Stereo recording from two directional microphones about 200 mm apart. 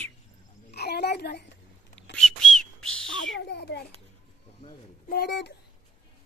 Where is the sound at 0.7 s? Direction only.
55° left (ahead or behind).